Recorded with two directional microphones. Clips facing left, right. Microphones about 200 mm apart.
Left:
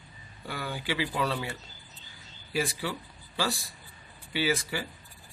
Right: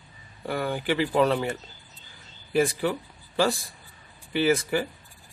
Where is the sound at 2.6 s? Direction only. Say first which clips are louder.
Right 8 dB; 50° right (ahead or behind).